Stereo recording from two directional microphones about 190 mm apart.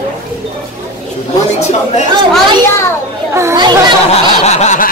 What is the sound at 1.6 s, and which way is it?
Snicker, 35° left (ahead or behind).